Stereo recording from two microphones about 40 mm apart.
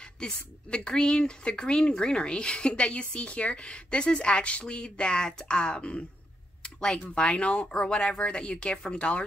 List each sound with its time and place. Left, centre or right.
0.2 s a woman's voice: left